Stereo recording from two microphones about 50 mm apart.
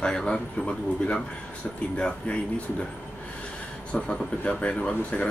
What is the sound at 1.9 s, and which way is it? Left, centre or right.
Speech, left.